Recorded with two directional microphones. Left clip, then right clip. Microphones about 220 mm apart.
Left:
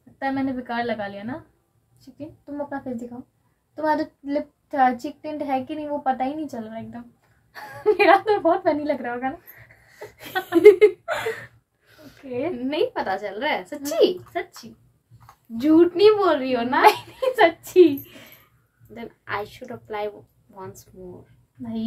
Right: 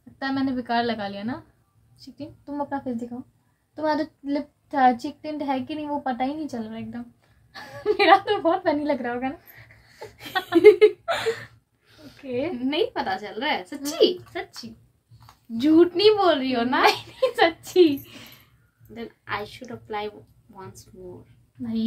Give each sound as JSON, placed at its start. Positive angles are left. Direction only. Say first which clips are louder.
{"t": 0.2, "sound": "a child's voice", "louder": "left 1 dB", "side_deg": -15}
{"t": 9.8, "sound": "a sound", "louder": "even", "side_deg": 10}
{"t": 10.4, "sound": "a woman's voice", "louder": "left 1 dB", "side_deg": 10}
{"t": 11.1, "sound": "whimper", "louder": "right 1 dB", "side_deg": -15}
{"t": 12.3, "sound": "a child's voice", "louder": "even", "side_deg": -15}
{"t": 12.6, "sound": "a woman's voice", "louder": "left 1 dB", "side_deg": 5}
{"t": 14.3, "sound": "a child's voice", "louder": "left 4 dB", "side_deg": -10}
{"t": 15.5, "sound": "a woman's voice", "louder": "left 1 dB", "side_deg": 5}
{"t": 17.4, "sound": "a child's voice", "louder": "left 4 dB", "side_deg": -10}
{"t": 18.9, "sound": "a woman's voice", "louder": "left 1 dB", "side_deg": 10}